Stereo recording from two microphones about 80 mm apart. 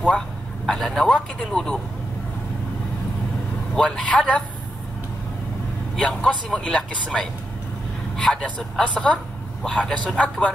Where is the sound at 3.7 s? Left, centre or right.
Centre.